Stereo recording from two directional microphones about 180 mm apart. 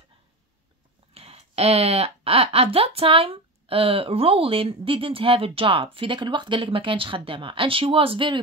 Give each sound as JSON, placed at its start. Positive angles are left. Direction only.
{"t": 1.1, "sound": "speech", "side_deg": -35}